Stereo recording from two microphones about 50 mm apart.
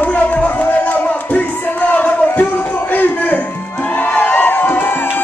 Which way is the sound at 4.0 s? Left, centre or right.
Left.